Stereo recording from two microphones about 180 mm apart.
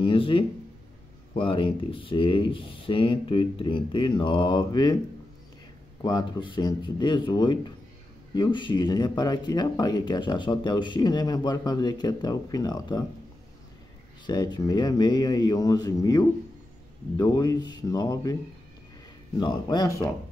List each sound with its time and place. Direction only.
0.0 s speech: 30° left (ahead or behind)
6.0 s speech: 25° left (ahead or behind)
14.2 s speech: 25° left (ahead or behind)